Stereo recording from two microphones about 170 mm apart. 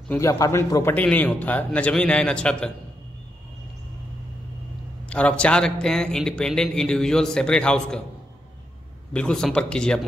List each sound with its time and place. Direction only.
0.1 s a man's voice: 20° left (ahead or behind)
5.1 s a man's voice: 5° left (ahead or behind)
9.1 s a man's voice: 5° left (ahead or behind)